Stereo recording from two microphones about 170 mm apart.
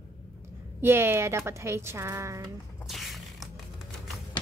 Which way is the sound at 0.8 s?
15° right (ahead or behind).